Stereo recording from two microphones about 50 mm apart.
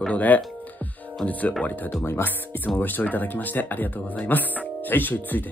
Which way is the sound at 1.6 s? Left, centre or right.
Left.